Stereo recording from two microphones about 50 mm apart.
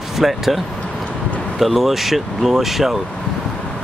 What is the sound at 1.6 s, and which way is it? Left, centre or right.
Speech, centre.